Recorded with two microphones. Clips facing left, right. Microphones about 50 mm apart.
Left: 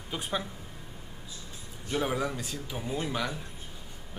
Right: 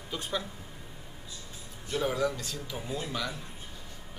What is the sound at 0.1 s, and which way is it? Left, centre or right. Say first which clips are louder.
Speech: left 1 dB; centre.